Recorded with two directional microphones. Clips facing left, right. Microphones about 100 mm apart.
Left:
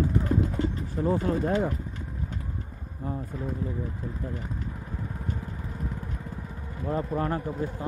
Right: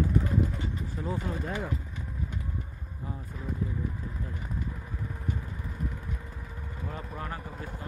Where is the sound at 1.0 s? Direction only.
60° left (ahead or behind).